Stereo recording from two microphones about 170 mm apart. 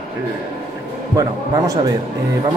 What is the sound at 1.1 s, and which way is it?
Speech, 20° right (ahead or behind).